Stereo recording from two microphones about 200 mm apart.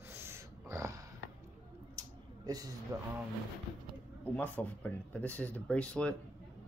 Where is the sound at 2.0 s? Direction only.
20° right (ahead or behind).